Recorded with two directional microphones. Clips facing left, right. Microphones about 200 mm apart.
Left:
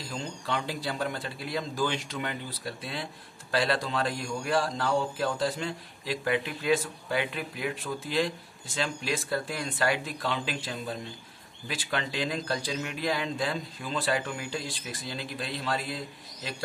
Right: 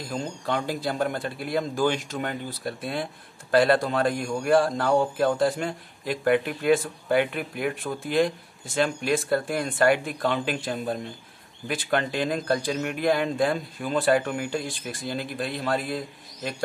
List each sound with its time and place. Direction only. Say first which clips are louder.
0.0 s speech: right 5 dB; 50° right (ahead or behind)